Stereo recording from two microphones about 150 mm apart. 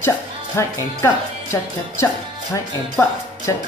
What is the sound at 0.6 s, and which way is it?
A woman's voice, 20° left (ahead or behind).